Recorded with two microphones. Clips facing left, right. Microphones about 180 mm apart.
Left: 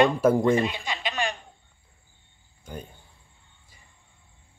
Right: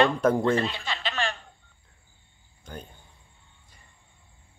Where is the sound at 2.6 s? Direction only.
10° left (ahead or behind).